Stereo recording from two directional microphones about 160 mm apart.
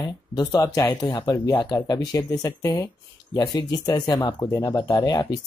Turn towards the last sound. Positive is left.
turn(degrees=25)  # may be behind; listen again after turning